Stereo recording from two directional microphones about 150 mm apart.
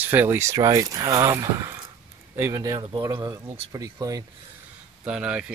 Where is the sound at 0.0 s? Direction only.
10° right (ahead or behind).